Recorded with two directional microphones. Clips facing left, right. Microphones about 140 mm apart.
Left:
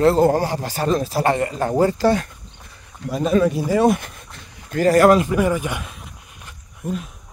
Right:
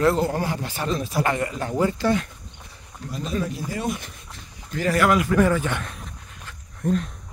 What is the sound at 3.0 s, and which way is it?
Speech, 80° left.